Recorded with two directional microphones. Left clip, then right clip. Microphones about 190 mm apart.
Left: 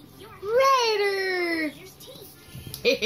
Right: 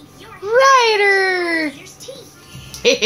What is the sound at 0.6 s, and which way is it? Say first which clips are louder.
Baby cry: right 9 dB; 15° right (ahead or behind).